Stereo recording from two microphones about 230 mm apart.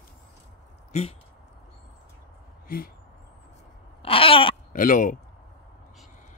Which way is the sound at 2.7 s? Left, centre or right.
Left.